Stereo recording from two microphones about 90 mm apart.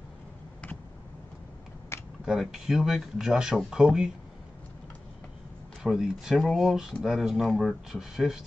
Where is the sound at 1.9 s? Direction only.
25° left (ahead or behind).